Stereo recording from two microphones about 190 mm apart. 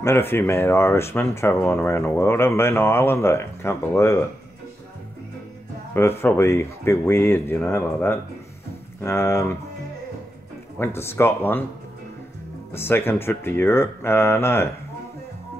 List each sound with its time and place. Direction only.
0.0 s speech: 10° left (ahead or behind)
5.9 s speech: 15° left (ahead or behind)
10.8 s speech: 10° left (ahead or behind)
12.7 s speech: 10° left (ahead or behind)